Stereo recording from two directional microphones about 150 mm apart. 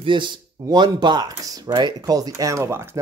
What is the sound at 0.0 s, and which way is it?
Speech, 30° right (ahead or behind).